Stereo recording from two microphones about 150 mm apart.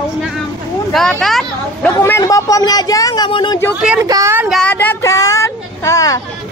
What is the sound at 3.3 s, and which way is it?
Speech, 35° left (ahead or behind).